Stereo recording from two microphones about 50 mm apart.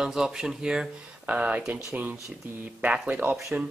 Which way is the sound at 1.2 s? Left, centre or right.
Right.